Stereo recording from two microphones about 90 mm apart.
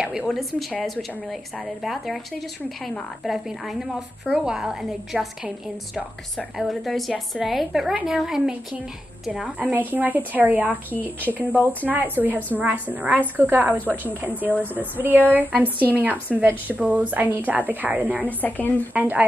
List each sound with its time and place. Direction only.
0.3 s a woman's voice: centre (ahead or behind)
3.3 s a woman's voice: 5° right (ahead or behind)
9.6 s a woman's voice: 20° right (ahead or behind)
18.2 s speech: 20° left (ahead or behind)
18.9 s a woman's voice: 20° right (ahead or behind)